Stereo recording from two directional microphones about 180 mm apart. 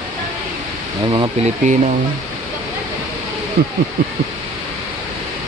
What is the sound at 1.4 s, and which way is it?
Speech, 40° right (ahead or behind).